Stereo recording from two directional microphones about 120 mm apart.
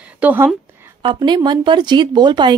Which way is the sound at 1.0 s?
40° right (ahead or behind).